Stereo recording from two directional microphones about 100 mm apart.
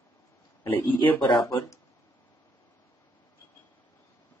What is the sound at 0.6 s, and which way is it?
Speech, 20° left (ahead or behind).